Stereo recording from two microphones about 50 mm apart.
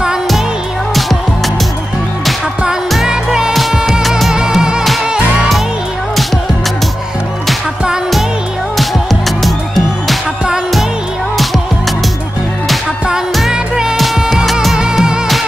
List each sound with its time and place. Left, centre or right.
3.1 s music: centre
8.7 s music: centre
13.5 s music: centre
14.3 s music: centre
14.8 s music: centre